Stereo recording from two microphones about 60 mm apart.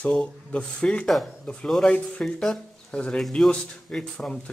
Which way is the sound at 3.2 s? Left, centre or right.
Centre.